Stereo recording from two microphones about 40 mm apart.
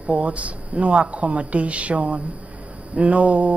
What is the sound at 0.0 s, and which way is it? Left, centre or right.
Speech, right.